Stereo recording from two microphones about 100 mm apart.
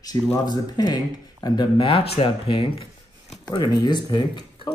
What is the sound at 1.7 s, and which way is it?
Speech, 65° left (ahead or behind).